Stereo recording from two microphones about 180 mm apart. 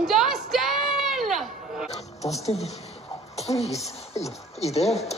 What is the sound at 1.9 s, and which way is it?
Music, 35° left (ahead or behind).